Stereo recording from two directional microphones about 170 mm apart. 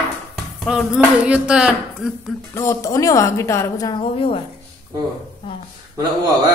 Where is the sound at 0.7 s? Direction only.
5° right (ahead or behind).